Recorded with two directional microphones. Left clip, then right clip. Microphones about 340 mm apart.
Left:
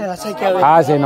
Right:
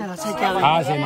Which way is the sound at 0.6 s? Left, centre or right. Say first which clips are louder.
Left 9 dB; left.